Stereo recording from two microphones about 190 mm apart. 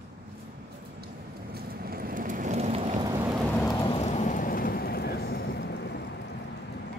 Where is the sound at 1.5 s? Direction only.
50° right (ahead or behind); by 3.0 s 35° right (ahead or behind).